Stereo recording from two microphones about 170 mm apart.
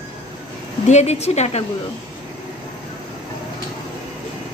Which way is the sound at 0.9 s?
40° left (ahead or behind).